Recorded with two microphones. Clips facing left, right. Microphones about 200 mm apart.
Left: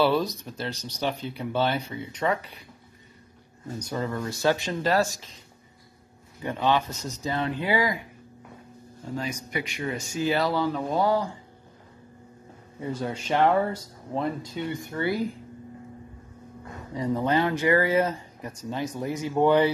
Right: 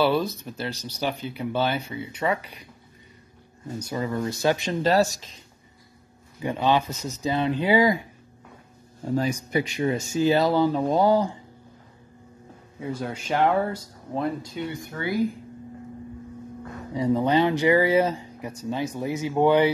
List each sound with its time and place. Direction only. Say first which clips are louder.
0.0 s speech: right 1 dB; 5° right (ahead or behind)
3.6 s speech: right 1 dB; 10° right (ahead or behind)
6.4 s speech: right 2 dB; 10° right (ahead or behind)
9.1 s speech: right 7 dB; 35° right (ahead or behind)
12.8 s speech: even; 5° right (ahead or behind)
16.9 s speech: right 3 dB; 15° right (ahead or behind)